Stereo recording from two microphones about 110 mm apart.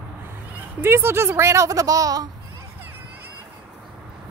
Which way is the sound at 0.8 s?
20° right (ahead or behind).